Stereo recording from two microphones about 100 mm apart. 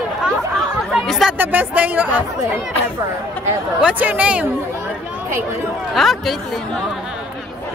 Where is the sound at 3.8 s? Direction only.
15° right (ahead or behind).